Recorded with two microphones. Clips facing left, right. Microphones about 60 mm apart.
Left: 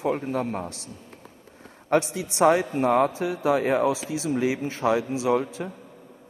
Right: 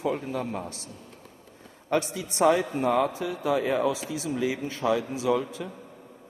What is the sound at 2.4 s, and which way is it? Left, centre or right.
Speech, left.